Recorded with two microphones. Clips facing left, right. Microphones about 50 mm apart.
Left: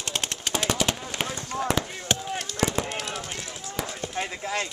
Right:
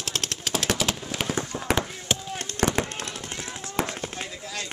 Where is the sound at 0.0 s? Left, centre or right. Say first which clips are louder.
Even; centre.